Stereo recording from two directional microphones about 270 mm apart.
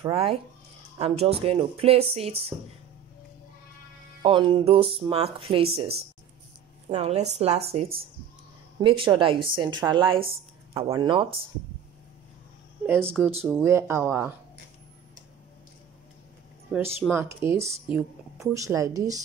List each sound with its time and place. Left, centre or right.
0.0 s a woman's voice: right
4.2 s a woman's voice: centre
12.8 s speech: centre
16.7 s speech: centre